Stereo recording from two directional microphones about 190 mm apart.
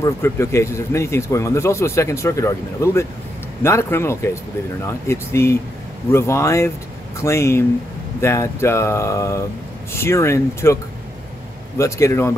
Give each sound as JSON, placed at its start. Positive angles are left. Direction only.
{"t": 0.0, "sound": "speech", "side_deg": 15}
{"t": 11.8, "sound": "speech", "side_deg": 15}